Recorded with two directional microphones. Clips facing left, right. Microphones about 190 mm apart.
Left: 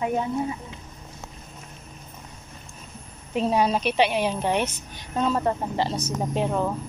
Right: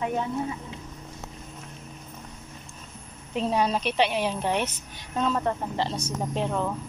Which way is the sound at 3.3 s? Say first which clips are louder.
Left 3 dB; 10° left (ahead or behind).